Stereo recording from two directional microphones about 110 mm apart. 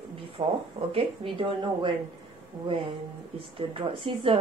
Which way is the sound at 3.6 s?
55° right (ahead or behind).